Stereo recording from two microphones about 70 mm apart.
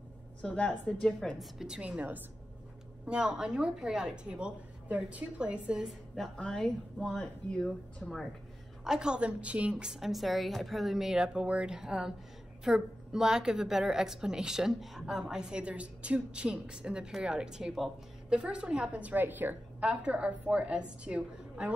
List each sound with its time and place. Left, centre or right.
0.4 s speech: left
1.4 s a woman's voice: centre
1.8 s a woman's voice: centre
6.3 s a woman's voice: centre
8.8 s a woman's voice: centre
9.8 s a woman's voice: centre; by 19.5 s right
19.8 s a woman's voice: centre